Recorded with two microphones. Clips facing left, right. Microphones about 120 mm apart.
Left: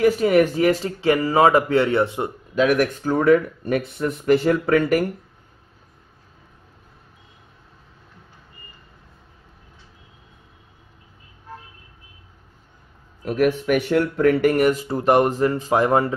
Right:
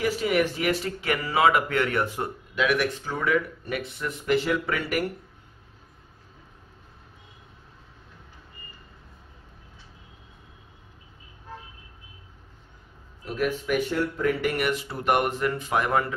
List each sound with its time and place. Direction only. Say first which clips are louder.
0.0 s speech: left 8 dB; 50° left (ahead or behind); by 2.3 s 25° left (ahead or behind)
2.5 s speech: left 6 dB; 40° left (ahead or behind)
13.2 s speech: left 8 dB; 60° left (ahead or behind); by 16.1 s 35° left (ahead or behind)